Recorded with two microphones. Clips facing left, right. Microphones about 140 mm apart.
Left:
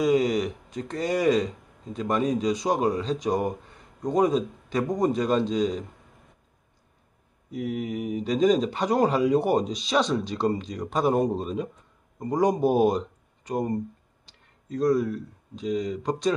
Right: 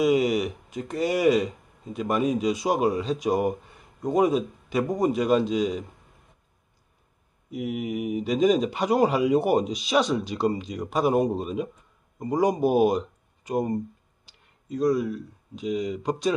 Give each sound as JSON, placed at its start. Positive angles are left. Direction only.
{"t": 0.0, "sound": "speech", "side_deg": -10}
{"t": 7.5, "sound": "speech", "side_deg": -15}
{"t": 14.8, "sound": "speech", "side_deg": -5}